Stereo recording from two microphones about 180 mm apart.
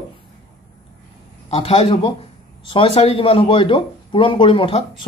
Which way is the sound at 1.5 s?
35° left (ahead or behind).